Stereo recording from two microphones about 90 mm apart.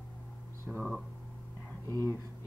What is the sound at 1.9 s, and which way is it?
Speech, 35° right (ahead or behind).